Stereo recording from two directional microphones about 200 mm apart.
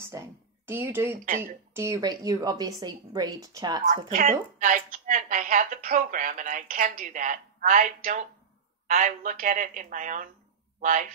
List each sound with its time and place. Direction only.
0.1 s a woman's voice: 15° right (ahead or behind)
3.8 s a woman's voice: 40° right (ahead or behind)